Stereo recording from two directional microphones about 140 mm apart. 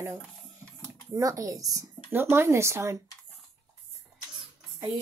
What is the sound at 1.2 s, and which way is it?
Speech, 25° right (ahead or behind).